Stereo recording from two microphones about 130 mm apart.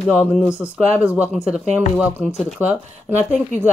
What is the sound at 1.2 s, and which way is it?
Speech, 10° right (ahead or behind).